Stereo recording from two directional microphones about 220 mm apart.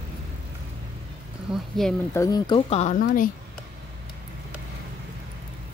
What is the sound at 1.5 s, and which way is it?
Speech, centre (ahead or behind).